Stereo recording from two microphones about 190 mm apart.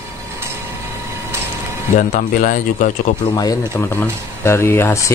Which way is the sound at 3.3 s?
20° left (ahead or behind).